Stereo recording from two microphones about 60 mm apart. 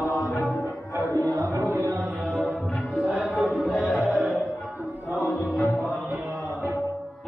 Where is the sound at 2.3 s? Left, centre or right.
Left.